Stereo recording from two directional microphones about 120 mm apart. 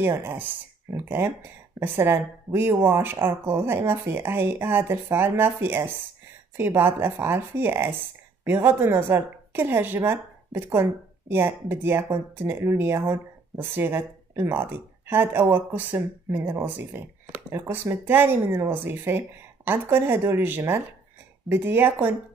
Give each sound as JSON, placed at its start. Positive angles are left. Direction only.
{"t": 0.0, "sound": "speech", "side_deg": -20}